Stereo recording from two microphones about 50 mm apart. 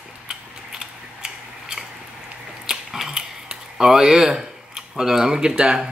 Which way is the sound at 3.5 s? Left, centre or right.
Centre.